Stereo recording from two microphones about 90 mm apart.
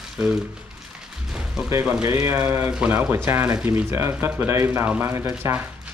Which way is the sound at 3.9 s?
30° right (ahead or behind).